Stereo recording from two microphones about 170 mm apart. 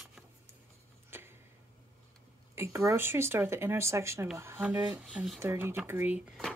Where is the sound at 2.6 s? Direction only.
15° right (ahead or behind).